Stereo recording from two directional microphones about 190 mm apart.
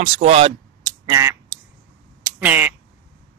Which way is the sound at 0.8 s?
20° right (ahead or behind).